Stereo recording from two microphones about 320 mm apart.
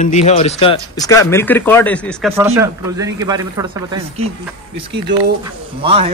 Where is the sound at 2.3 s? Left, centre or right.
Centre.